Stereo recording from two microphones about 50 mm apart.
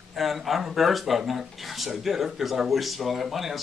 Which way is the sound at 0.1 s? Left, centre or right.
Centre.